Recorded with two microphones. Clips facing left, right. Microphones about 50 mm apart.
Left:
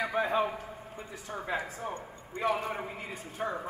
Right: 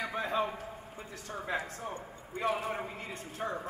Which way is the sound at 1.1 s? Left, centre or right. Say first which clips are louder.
Left 1 dB; centre.